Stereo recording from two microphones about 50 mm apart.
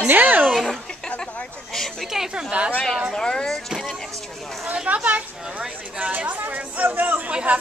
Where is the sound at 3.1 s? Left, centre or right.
Centre.